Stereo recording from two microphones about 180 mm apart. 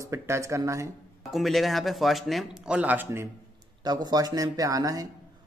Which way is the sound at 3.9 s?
20° right (ahead or behind).